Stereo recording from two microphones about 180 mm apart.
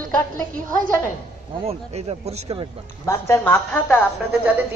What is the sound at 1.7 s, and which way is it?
A man's voice, 35° right (ahead or behind).